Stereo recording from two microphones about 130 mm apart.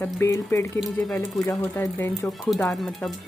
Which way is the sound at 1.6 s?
20° left (ahead or behind).